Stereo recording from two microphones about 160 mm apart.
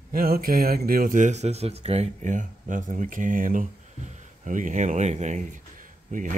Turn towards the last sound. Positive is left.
turn(degrees=-55)  # may be behind; listen again after turning